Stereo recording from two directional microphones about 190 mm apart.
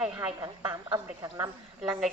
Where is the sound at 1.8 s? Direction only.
5° right (ahead or behind).